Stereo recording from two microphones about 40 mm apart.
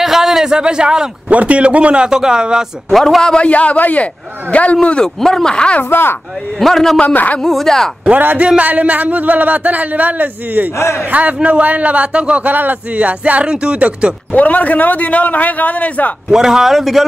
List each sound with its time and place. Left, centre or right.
0.0 s a sound: centre
1.3 s a man's voice: right
2.0 s speech: centre
2.9 s a man's voice: centre
3.2 s a man's voice: centre
3.4 s a man's voice: left
5.0 s speech: centre
5.8 s speech: left
6.6 s speech: centre
8.5 s a man's voice: right
12.4 s speech: right
12.9 s a man's voice: right
14.3 s a man's voice: left
16.3 s speech: centre